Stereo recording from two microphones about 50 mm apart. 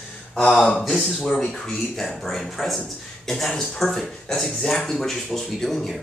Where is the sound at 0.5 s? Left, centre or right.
Centre.